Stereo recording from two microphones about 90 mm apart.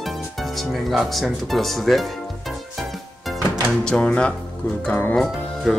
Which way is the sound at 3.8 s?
10° left (ahead or behind).